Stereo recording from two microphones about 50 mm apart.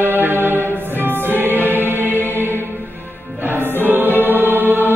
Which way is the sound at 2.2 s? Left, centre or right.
Right.